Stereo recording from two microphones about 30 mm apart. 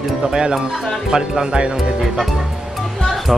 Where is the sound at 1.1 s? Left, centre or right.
Right.